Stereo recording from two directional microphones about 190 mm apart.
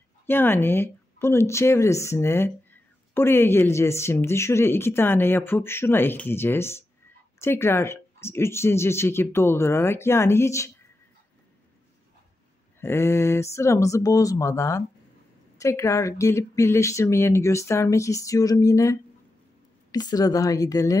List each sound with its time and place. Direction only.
0.3 s speech: 10° left (ahead or behind)
12.8 s a woman's voice: 15° left (ahead or behind)